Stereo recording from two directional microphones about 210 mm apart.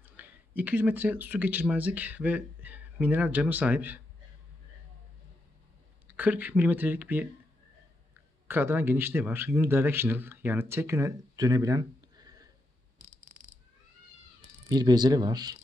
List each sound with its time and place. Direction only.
0.0 s speech: 10° right (ahead or behind)
6.0 s a man's voice: 10° right (ahead or behind)
8.5 s a man's voice: 10° right (ahead or behind)
14.7 s speech: 20° right (ahead or behind)